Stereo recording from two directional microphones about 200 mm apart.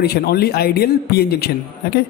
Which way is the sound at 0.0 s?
50° left (ahead or behind).